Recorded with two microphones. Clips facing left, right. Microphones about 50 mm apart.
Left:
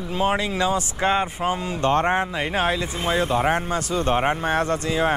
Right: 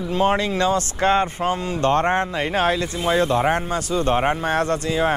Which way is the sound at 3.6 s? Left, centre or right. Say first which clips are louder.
Right 1 dB; left.